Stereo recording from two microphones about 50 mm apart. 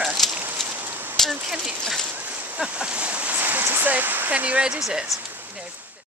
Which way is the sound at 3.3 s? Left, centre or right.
Right.